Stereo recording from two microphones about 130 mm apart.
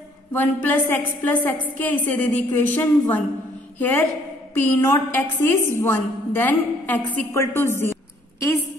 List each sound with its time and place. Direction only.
0.3 s a woman's voice: 15° left (ahead or behind)